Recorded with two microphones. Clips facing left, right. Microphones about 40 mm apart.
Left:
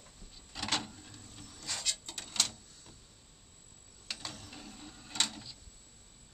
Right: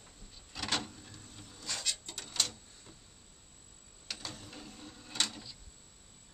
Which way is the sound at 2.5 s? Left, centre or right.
Right.